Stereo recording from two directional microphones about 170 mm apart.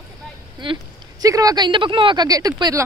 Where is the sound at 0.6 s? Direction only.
25° right (ahead or behind).